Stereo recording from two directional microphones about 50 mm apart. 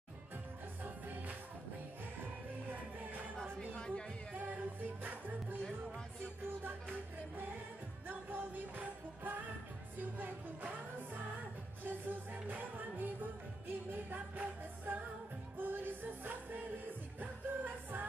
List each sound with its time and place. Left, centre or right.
0.8 s music: right
2.7 s music: right
3.5 s music: centre
4.3 s music: right
8.1 s music: right